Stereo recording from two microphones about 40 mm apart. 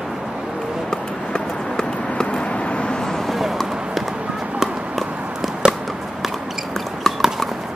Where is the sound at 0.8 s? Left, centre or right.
Left.